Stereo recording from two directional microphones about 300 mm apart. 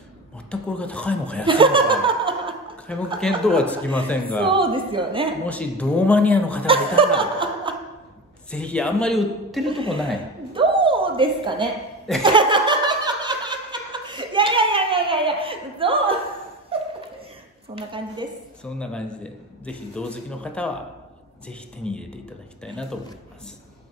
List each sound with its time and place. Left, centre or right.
0.5 s a man's voice: centre
1.4 s laughter: centre
3.2 s a man's voice: centre
4.5 s speech: centre
5.5 s a man's voice: centre
6.6 s speech: centre
7.2 s chuckle: centre
8.5 s a man's voice: centre
9.7 s speech: centre
10.5 s a sound: centre
17.7 s speech: centre
18.6 s a man's voice: centre